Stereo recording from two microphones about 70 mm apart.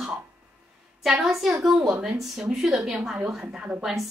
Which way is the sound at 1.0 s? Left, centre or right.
Centre.